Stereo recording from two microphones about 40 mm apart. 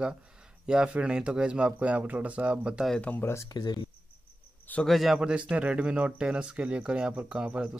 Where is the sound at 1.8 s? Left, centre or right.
Right.